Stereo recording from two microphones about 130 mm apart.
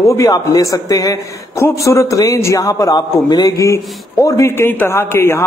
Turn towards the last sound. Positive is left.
turn(degrees=20)  # may be behind; listen again after turning